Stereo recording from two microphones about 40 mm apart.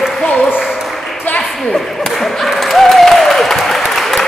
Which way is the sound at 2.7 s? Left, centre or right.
Centre.